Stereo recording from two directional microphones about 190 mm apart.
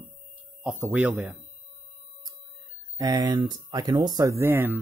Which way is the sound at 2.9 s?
20° right (ahead or behind).